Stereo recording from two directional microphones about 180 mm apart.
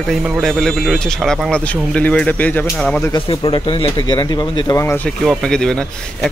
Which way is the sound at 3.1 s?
30° left (ahead or behind).